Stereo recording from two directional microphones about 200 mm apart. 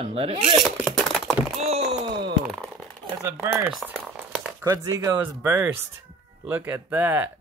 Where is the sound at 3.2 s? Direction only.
10° right (ahead or behind).